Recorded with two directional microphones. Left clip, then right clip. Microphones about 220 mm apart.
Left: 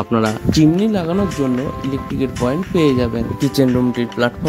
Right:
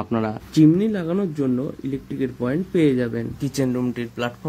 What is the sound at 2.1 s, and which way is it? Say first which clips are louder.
Speech: left 5 dB; 20° left (ahead or behind).